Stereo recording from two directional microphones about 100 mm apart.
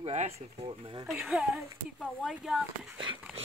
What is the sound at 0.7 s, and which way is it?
Speech, 60° right (ahead or behind).